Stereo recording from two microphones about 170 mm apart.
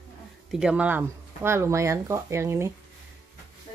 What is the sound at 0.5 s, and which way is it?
Speech, 5° right (ahead or behind).